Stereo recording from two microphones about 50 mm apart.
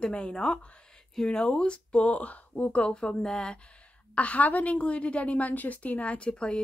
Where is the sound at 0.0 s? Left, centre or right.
Left.